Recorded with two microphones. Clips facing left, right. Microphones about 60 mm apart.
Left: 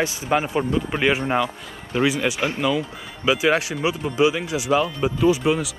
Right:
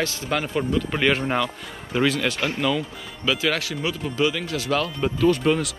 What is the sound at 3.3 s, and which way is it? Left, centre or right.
Speech, left.